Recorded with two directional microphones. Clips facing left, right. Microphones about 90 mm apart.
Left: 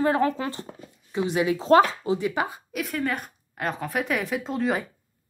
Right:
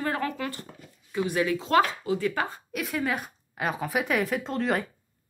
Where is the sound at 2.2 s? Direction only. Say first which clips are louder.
Left 2 dB; 10° left (ahead or behind).